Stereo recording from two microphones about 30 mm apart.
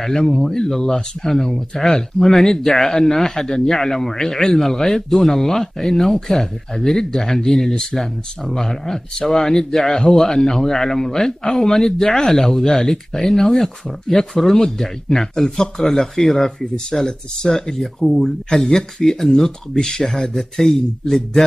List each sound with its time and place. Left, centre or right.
0.4 s speech: centre
19.7 s speech: left
20.2 s speech: centre